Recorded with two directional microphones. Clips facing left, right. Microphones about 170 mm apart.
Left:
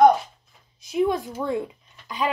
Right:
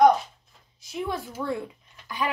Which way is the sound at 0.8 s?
20° left (ahead or behind).